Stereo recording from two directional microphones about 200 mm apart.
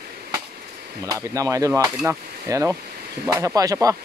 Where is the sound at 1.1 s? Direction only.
15° right (ahead or behind).